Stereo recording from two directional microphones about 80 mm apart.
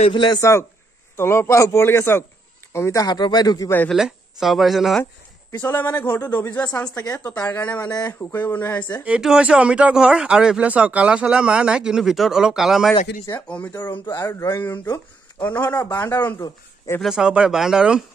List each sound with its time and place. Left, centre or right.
0.1 s a man's voice: left
0.4 s a man's voice: left
3.0 s speech: left
3.9 s speech: centre
5.5 s speech: left
7.0 s a man's voice: left
7.4 s speech: left
7.9 s speech: left
8.2 s speech: left
9.2 s speech: centre
13.5 s speech: left
14.1 s speech: left
15.4 s speech: left
17.0 s speech: centre